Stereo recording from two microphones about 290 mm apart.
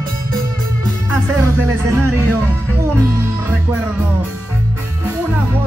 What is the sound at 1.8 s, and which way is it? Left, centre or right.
Music, centre.